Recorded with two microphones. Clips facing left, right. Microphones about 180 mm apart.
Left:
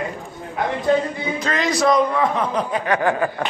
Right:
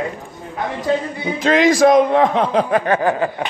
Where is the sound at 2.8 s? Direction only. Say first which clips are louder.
Right 3 dB; 35° right (ahead or behind).